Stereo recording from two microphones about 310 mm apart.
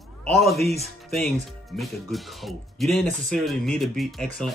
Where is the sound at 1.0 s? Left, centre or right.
Centre.